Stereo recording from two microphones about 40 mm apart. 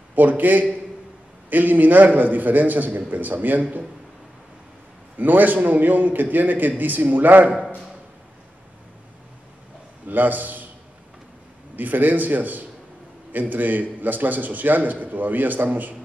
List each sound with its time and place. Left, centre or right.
0.1 s a man's voice: right
5.1 s a man's voice: right
10.0 s a man's voice: right
11.7 s a man's voice: right